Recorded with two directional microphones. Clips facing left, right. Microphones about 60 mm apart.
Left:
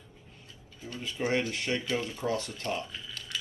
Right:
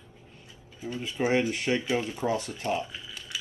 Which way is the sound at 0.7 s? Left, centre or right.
Centre.